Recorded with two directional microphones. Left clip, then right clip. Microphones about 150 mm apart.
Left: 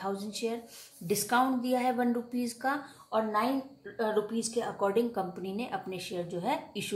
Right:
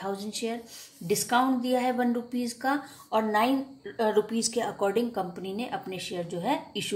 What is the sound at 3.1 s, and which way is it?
A woman's voice, 25° right (ahead or behind).